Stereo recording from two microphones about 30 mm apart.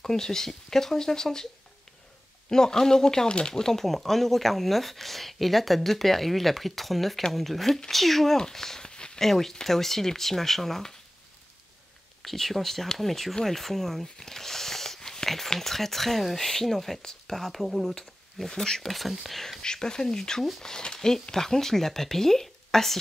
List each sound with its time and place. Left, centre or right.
0.0 s speech: centre
2.5 s speech: centre
3.3 s speech: left
3.8 s speech: centre
8.4 s speech: centre
8.8 s a sound: left
9.2 s speech: centre
12.2 s speech: centre
15.2 s a sound: centre
15.5 s speech: centre
18.4 s speech: centre
18.9 s speech: centre
19.6 s speech: left